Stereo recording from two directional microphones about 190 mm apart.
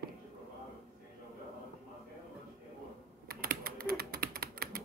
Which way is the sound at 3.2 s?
50° right (ahead or behind).